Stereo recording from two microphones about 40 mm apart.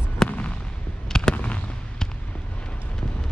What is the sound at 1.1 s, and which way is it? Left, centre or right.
Fireworks, centre.